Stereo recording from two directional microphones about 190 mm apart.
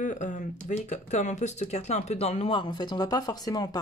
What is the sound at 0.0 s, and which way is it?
Speech, 40° left (ahead or behind).